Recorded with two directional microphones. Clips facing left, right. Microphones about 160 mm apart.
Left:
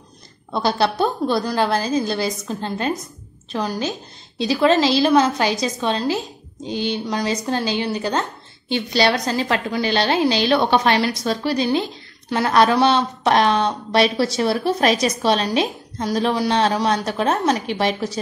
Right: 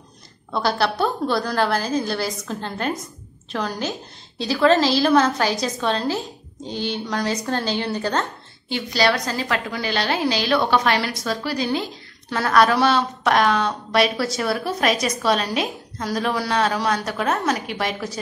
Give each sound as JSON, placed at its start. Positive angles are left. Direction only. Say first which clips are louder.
{"t": 0.5, "sound": "a woman's voice", "louder": "left 2 dB", "side_deg": 20}